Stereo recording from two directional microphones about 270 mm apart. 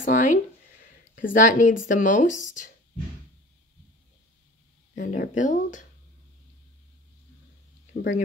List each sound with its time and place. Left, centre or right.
0.0 s speech: left
4.9 s speech: left
7.9 s speech: left